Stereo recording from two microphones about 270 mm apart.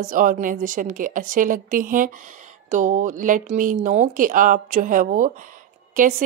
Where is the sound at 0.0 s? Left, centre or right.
Right.